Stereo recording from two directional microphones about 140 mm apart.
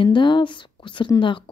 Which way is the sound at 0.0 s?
35° left (ahead or behind).